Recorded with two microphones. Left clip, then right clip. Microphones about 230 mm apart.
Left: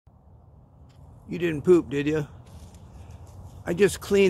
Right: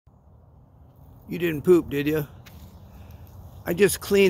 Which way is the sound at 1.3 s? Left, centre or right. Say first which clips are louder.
Right 1 dB; centre.